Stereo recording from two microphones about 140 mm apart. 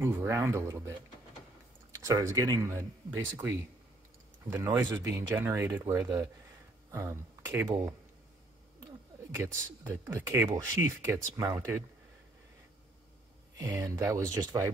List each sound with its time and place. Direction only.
0.0 s speech: 20° right (ahead or behind)
9.3 s speech: 20° right (ahead or behind)
13.6 s speech: 20° right (ahead or behind)